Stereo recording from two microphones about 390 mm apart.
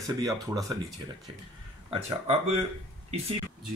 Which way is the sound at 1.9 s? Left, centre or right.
Centre.